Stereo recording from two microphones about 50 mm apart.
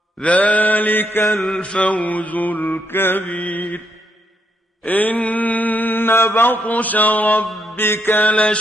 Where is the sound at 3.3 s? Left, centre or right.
Left.